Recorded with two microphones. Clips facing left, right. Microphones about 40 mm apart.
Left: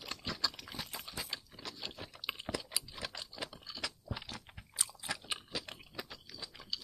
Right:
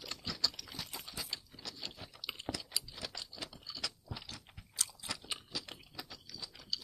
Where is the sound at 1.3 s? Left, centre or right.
Centre.